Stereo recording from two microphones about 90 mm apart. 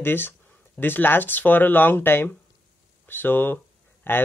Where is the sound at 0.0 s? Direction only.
25° left (ahead or behind).